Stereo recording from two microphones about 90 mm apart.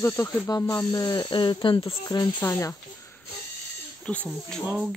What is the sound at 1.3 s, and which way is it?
Speech, 65° left (ahead or behind).